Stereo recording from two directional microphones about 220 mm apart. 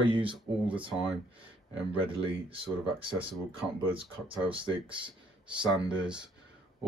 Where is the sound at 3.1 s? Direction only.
25° right (ahead or behind).